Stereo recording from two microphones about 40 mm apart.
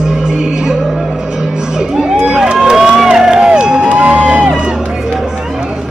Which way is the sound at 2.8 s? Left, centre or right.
Centre.